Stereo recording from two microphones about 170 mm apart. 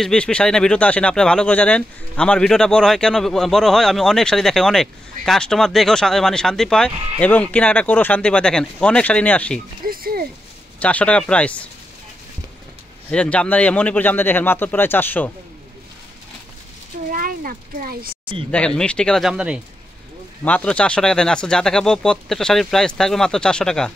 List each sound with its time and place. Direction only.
0.0 s speech: 5° left (ahead or behind)
9.8 s a sound: 60° right (ahead or behind)
10.8 s speech: 10° left (ahead or behind)
13.1 s speech: 5° left (ahead or behind)
17.1 s a sound: 55° right (ahead or behind)
18.8 s speech: 5° left (ahead or behind)
20.4 s speech: 5° left (ahead or behind)